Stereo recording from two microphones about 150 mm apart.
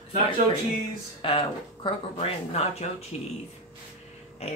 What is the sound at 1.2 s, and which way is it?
Speech, 35° left (ahead or behind).